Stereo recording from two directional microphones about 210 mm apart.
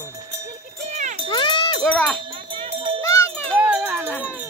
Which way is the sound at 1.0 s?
35° right (ahead or behind).